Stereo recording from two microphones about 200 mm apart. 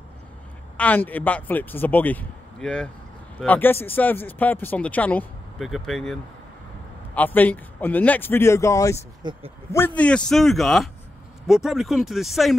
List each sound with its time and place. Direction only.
0.7 s speech: 10° left (ahead or behind)
7.2 s speech: 10° left (ahead or behind)
9.2 s speech: 20° right (ahead or behind)
9.7 s a man's voice: 10° left (ahead or behind)